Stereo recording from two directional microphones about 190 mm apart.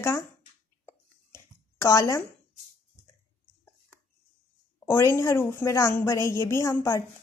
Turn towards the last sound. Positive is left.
turn(degrees=15)  # may be behind; listen again after turning